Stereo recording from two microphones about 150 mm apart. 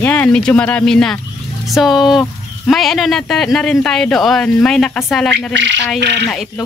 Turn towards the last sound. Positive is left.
turn(degrees=5)  # may be behind; listen again after turning